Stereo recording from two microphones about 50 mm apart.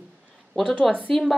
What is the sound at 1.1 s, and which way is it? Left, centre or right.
Speech, centre.